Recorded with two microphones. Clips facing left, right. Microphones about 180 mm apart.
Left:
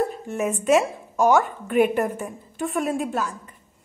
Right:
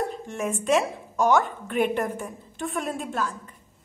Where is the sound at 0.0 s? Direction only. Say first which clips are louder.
Left 4 dB; 40° left (ahead or behind).